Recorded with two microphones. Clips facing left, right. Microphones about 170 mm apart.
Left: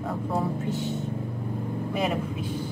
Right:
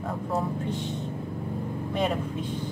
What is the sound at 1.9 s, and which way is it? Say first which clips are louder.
Speech: right 1 dB; 5° left (ahead or behind).